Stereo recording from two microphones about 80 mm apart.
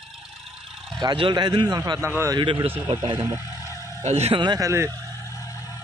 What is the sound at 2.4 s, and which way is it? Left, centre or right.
Speech, right.